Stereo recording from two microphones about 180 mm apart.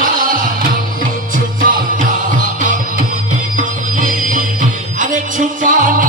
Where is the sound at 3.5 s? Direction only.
45° right (ahead or behind).